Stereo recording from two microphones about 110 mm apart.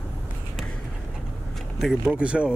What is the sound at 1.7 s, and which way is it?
Speech, 5° right (ahead or behind).